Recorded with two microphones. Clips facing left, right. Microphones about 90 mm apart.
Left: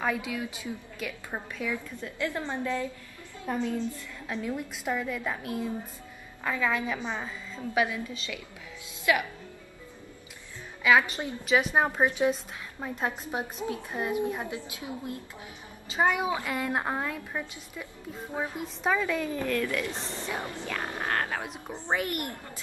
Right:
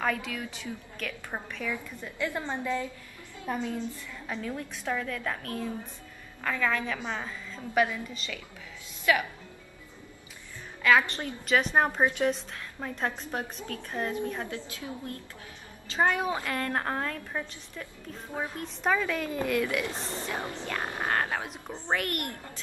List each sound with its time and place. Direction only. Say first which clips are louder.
0.0 s a woman's voice: left 1 dB; 10° left (ahead or behind)
2.1 s a woman's voice: even; 15° right (ahead or behind)
4.3 s a woman's voice: left 2 dB; 10° left (ahead or behind)
10.8 s a woman's voice: left 1 dB; 10° left (ahead or behind)
18.8 s a woman's voice: even; centre (ahead or behind)
19.3 s a woman's voice: right 1 dB; 15° right (ahead or behind)
21.4 s a woman's voice: left 1 dB; 5° left (ahead or behind)